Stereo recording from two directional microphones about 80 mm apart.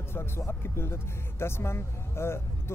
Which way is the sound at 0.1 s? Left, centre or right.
Left.